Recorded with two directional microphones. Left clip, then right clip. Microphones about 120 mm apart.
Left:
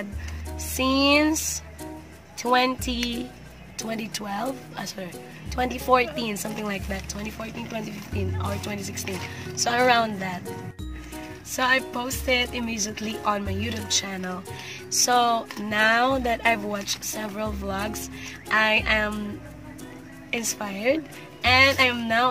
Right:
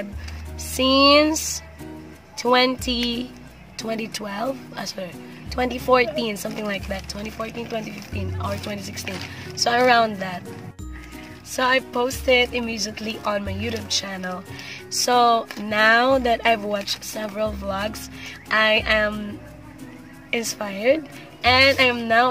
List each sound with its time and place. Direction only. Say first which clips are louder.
0.6 s music: right 6 dB; 35° right (ahead or behind)
2.3 s a woman's voice: right 3 dB; 35° right (ahead or behind)
11.5 s a woman's voice: right 3 dB; 20° right (ahead or behind)
20.2 s a woman's voice: right 3 dB; 20° right (ahead or behind)